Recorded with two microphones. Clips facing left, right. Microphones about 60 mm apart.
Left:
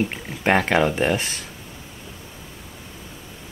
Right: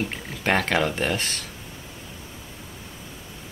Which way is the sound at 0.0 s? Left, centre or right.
Centre.